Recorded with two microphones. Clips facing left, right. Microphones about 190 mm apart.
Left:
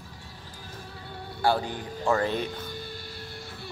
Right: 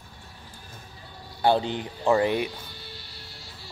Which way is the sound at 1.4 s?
20° right (ahead or behind).